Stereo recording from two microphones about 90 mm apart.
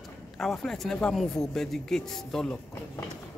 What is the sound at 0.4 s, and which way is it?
Speech, 5° left (ahead or behind).